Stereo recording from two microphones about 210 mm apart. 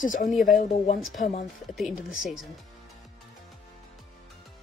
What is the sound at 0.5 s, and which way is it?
Speech, 35° left (ahead or behind).